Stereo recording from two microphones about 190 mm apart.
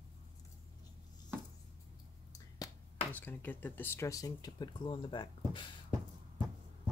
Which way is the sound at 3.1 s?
10° left (ahead or behind).